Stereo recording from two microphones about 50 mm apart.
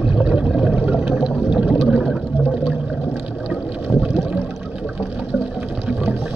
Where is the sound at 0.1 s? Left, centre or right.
Right.